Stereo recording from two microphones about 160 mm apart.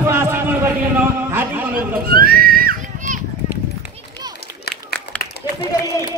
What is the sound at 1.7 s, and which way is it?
Children playing, 65° right (ahead or behind).